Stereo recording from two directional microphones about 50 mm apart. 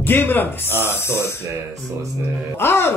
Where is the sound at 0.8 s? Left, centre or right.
Left.